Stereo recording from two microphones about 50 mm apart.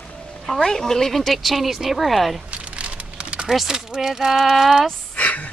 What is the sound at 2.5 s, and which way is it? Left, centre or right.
Crumpling, right.